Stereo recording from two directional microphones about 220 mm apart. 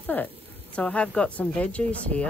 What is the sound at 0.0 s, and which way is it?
Speech, 10° left (ahead or behind).